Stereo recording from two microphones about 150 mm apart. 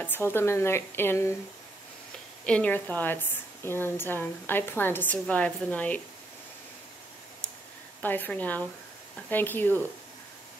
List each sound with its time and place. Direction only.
0.0 s a woman's voice: 15° left (ahead or behind)
2.4 s a woman's voice: 10° left (ahead or behind)
8.0 s a woman's voice: 10° left (ahead or behind)